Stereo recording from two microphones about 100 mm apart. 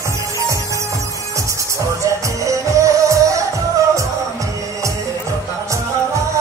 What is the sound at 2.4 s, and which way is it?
Music, 30° right (ahead or behind).